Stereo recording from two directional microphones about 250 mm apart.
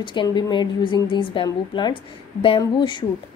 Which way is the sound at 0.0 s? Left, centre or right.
Centre.